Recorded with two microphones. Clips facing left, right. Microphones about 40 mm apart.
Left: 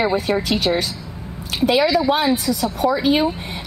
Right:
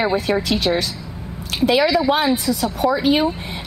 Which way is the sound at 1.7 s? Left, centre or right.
Right.